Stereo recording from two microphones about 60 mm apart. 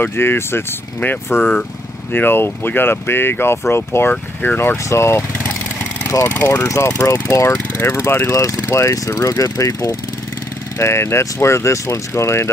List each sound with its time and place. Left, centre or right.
0.0 s speech: left
2.1 s speech: left
4.1 s speech: left
4.8 s speech: left
6.2 s speech: left
6.7 s speech: left
10.8 s speech: left